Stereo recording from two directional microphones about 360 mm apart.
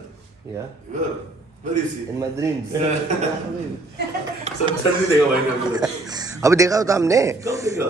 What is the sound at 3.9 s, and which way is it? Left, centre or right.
A man's voice, centre.